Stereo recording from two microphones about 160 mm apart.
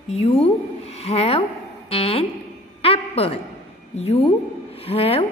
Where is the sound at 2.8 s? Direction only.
35° left (ahead or behind).